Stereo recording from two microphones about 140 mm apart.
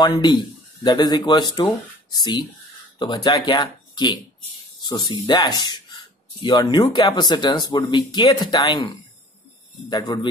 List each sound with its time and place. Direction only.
0.0 s speech: 30° left (ahead or behind)